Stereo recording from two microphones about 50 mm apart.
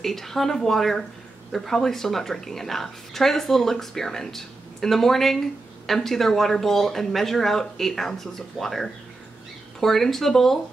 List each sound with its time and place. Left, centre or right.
0.0 s speech: centre